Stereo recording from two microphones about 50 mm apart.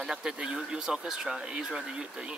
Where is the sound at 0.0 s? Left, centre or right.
Centre.